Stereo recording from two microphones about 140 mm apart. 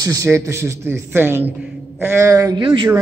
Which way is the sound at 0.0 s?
25° right (ahead or behind).